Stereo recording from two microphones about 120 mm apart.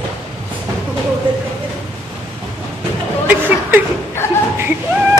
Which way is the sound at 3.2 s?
15° right (ahead or behind).